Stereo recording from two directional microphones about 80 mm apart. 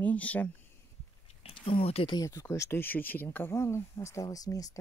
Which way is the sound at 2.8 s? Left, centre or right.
Left.